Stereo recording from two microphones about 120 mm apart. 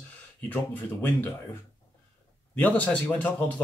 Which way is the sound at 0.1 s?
15° left (ahead or behind).